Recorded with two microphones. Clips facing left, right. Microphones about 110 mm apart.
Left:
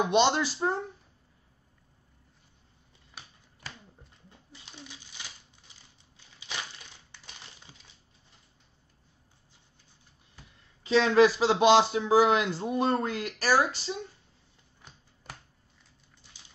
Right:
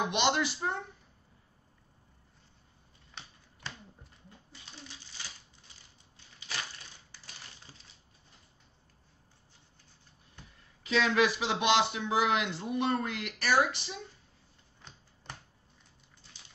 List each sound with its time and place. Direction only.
0.1 s speech: 35° left (ahead or behind)
10.8 s speech: 30° left (ahead or behind)
14.8 s finger snapping: 5° left (ahead or behind)